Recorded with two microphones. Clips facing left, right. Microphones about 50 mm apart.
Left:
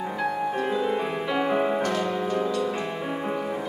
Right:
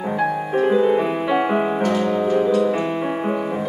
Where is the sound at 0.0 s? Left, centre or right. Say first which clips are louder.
Right 5 dB; centre.